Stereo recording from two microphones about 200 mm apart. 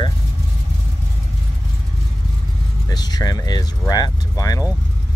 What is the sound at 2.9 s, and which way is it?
Speech, 20° left (ahead or behind).